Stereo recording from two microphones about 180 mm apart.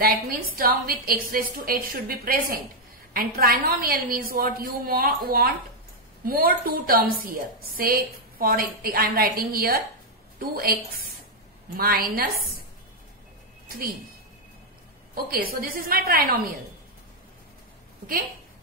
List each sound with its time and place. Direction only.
0.0 s a woman's voice: 55° right (ahead or behind)
15.1 s a woman's voice: 55° right (ahead or behind)